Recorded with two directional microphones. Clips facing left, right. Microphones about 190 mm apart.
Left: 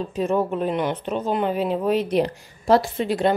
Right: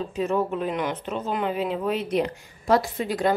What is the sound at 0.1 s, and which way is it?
A woman's voice, 35° left (ahead or behind).